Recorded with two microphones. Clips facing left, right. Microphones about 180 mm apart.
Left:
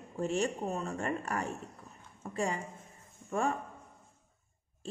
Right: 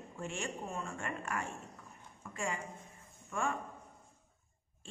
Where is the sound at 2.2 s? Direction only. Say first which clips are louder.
Left 5 dB; 35° left (ahead or behind).